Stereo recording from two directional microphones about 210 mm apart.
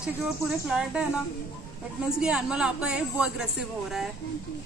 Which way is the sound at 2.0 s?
5° right (ahead or behind).